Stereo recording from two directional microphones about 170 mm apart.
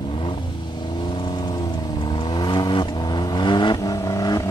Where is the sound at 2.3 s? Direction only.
25° left (ahead or behind).